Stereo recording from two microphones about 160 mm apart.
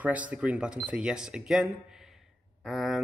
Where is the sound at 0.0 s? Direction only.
10° right (ahead or behind).